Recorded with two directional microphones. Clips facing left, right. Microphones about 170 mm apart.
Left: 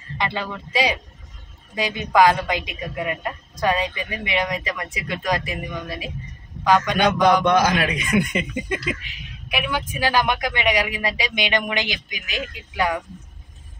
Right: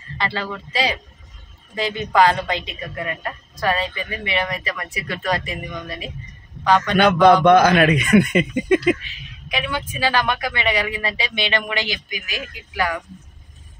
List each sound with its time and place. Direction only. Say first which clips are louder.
0.2 s a woman's voice: right 1 dB; 15° left (ahead or behind)
7.4 s speech: right 6 dB; 60° right (ahead or behind)
9.0 s a woman's voice: left 1 dB; 10° left (ahead or behind)